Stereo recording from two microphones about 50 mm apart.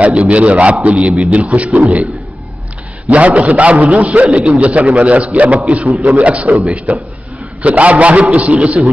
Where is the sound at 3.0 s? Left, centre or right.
Right.